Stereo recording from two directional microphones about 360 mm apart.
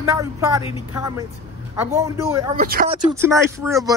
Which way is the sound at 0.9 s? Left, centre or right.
Centre.